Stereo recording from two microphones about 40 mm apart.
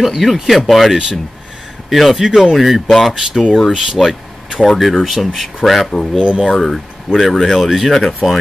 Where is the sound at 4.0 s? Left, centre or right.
Centre.